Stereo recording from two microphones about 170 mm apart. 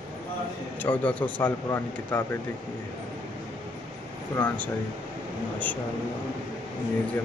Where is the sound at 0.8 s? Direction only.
10° left (ahead or behind).